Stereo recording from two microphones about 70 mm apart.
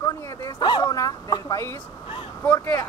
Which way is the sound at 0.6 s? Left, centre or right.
Left.